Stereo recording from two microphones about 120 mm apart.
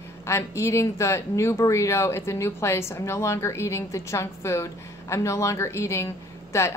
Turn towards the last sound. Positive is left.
turn(degrees=25)  # may be behind; listen again after turning